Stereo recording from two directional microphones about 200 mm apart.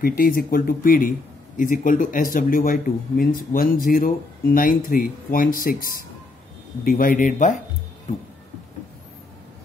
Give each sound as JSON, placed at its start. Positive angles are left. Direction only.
{"t": 0.0, "sound": "speech", "side_deg": 45}